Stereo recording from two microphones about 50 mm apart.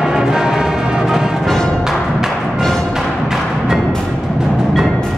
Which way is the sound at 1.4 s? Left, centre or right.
Centre.